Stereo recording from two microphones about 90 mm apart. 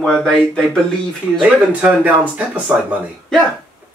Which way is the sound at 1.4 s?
15° right (ahead or behind).